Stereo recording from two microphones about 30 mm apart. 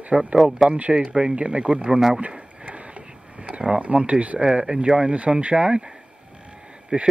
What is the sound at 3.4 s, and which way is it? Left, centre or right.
Speech, right.